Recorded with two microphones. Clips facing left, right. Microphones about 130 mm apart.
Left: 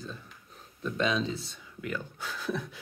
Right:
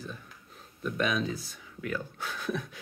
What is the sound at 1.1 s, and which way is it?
Speech, 25° left (ahead or behind).